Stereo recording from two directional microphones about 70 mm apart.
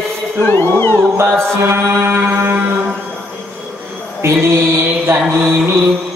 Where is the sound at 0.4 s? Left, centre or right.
Left.